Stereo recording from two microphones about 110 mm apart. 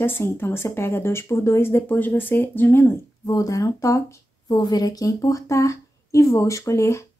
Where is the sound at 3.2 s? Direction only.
35° left (ahead or behind).